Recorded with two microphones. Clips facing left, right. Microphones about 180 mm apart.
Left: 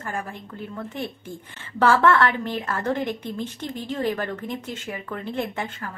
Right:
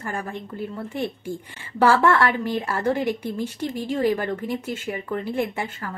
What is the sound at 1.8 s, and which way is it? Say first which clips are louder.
A woman's voice: even; 10° right (ahead or behind).